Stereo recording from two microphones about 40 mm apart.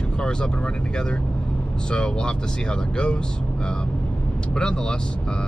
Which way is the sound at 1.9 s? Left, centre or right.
Left.